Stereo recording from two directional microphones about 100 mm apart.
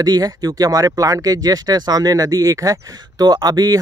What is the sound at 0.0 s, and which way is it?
Speech, 40° right (ahead or behind).